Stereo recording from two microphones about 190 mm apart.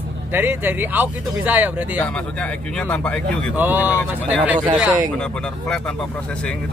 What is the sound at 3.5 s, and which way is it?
Speech, 10° right (ahead or behind).